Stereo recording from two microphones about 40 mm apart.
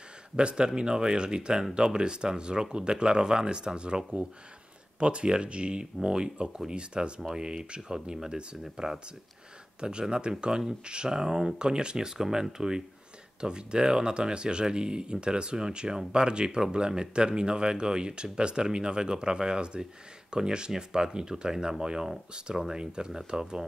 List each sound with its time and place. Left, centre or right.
0.4 s speech: right